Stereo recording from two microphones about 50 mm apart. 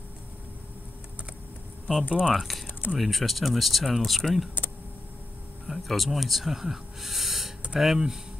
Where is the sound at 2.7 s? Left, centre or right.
Left.